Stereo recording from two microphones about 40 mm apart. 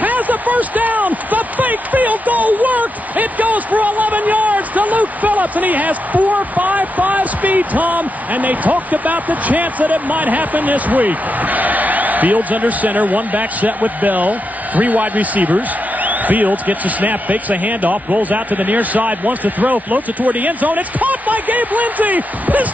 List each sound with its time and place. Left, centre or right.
0.0 s speech: right